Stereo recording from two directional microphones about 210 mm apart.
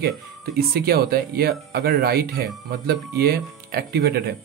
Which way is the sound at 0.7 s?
50° right (ahead or behind).